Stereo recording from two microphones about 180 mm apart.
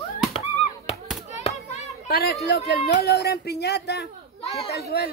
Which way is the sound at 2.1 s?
60° left (ahead or behind).